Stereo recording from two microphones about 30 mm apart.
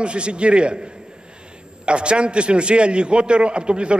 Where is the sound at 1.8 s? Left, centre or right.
Right.